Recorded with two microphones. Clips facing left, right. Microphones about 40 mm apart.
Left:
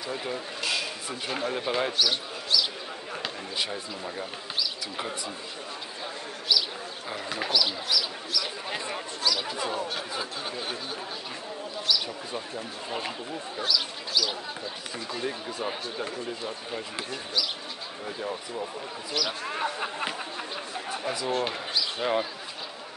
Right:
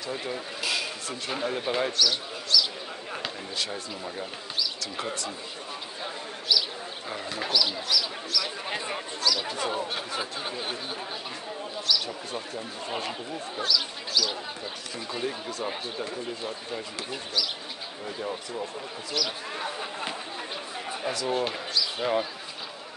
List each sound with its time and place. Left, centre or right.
0.0 s speech: centre
1.9 s speech: centre
6.5 s bird: centre
7.1 s speech: centre
8.7 s a sound: centre
9.2 s a sound: centre
9.5 s speech: centre
11.9 s speech: centre
18.0 s speech: centre
19.4 s speech: left
21.3 s speech: centre